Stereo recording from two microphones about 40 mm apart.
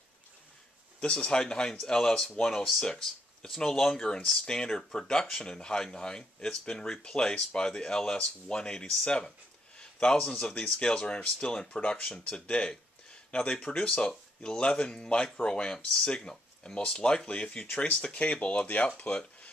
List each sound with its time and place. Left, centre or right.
1.0 s speech: left
9.8 s a sound: left
10.4 s speech: left